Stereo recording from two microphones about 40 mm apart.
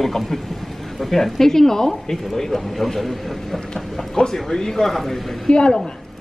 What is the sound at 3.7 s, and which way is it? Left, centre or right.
Speech, centre.